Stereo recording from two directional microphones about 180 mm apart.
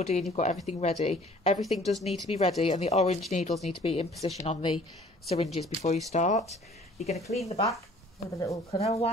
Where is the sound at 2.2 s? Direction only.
40° left (ahead or behind).